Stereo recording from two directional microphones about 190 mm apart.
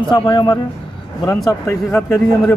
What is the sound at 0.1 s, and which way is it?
Speech, 20° left (ahead or behind).